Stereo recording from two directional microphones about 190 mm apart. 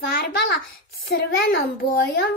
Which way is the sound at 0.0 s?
55° left (ahead or behind).